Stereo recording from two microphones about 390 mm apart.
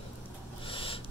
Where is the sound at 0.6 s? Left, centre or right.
Centre.